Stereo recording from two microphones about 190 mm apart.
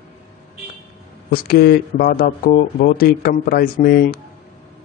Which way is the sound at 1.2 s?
50° left (ahead or behind).